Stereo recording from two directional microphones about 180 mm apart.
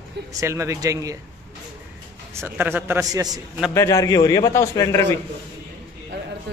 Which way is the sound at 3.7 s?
15° left (ahead or behind).